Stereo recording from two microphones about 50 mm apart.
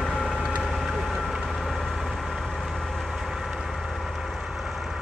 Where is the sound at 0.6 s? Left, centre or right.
Centre.